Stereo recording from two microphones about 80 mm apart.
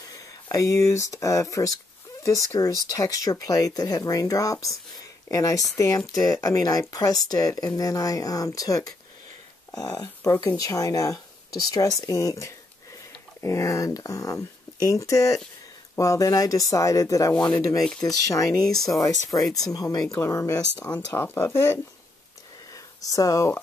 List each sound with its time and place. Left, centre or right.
0.0 s speech: left
18.6 s speech: centre
18.9 s speech: left
20.2 s speech: left
22.7 s a sound: left